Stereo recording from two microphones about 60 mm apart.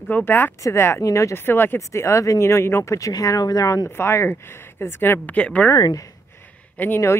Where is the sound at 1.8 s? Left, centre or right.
Left.